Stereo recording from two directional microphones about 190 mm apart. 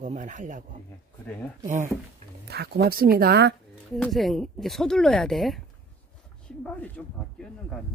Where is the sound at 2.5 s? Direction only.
55° right (ahead or behind).